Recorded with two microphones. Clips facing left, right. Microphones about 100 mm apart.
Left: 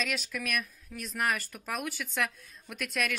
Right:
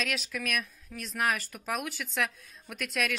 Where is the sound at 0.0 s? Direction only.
Centre (ahead or behind).